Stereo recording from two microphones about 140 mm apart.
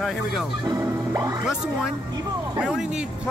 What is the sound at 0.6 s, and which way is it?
Music, 25° right (ahead or behind).